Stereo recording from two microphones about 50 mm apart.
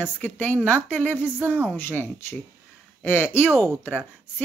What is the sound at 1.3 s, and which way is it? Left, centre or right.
Speech, right.